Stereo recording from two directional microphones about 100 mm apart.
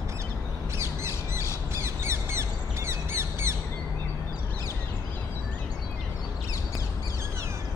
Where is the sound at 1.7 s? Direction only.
25° right (ahead or behind).